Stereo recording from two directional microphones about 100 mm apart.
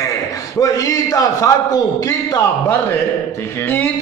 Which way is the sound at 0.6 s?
35° left (ahead or behind).